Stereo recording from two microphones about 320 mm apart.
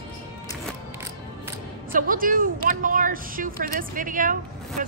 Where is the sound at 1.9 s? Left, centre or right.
Right.